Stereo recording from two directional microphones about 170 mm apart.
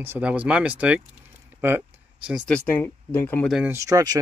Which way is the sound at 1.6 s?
10° right (ahead or behind).